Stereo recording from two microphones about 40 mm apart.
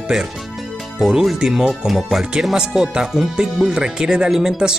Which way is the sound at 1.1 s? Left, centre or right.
Centre.